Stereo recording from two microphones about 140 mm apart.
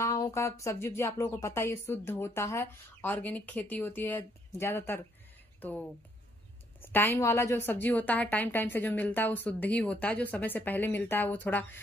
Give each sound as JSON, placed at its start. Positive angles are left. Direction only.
{"t": 0.0, "sound": "speech", "side_deg": 25}